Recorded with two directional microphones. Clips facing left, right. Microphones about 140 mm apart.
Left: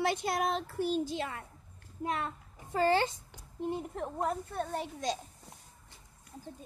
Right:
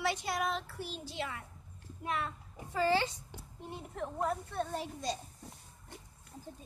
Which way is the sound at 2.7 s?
50° left (ahead or behind).